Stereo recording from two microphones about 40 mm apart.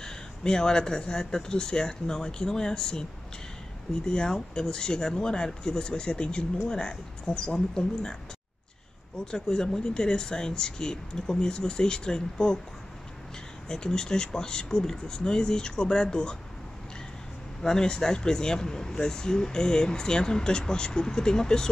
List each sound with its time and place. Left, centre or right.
0.0 s speech: centre
9.2 s speech: centre
13.7 s speech: centre
17.6 s speech: centre